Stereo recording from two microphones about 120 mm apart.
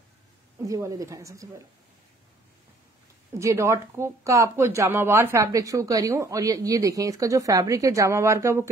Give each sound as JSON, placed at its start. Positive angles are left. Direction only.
{"t": 0.7, "sound": "speech", "side_deg": -30}
{"t": 3.3, "sound": "speech", "side_deg": -25}